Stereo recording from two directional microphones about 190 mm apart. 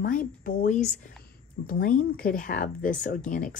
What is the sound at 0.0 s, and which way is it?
Speech, 45° left (ahead or behind).